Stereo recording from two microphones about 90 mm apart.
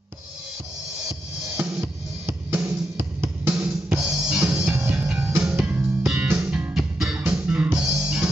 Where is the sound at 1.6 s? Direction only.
25° right (ahead or behind).